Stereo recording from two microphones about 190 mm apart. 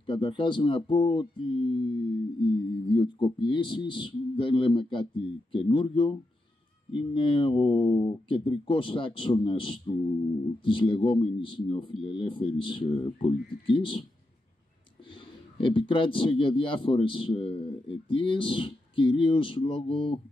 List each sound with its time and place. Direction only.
0.0 s speech: 25° left (ahead or behind)
15.5 s speech: 25° left (ahead or behind)